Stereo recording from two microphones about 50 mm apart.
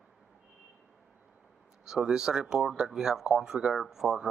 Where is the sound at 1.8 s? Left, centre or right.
Centre.